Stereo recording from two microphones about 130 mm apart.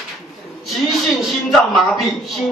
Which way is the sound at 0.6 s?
Centre (ahead or behind).